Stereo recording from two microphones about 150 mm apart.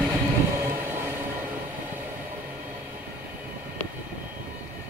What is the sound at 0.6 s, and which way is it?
Train, 15° right (ahead or behind).